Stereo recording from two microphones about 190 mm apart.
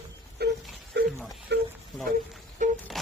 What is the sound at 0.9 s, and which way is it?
Wail, 60° right (ahead or behind).